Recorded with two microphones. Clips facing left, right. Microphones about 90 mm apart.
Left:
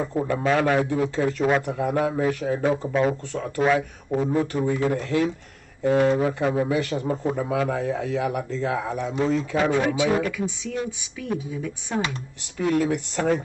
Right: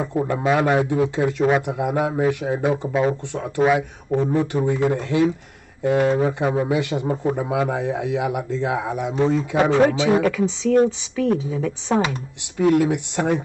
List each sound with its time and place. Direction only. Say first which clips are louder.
0.0 s a man's voice: right 2 dB; 15° right (ahead or behind)
9.8 s speech: right 5 dB; 65° right (ahead or behind)
11.1 s a woman's voice: right 8 dB; 70° right (ahead or behind)
12.6 s a man's voice: right 5 dB; 20° right (ahead or behind)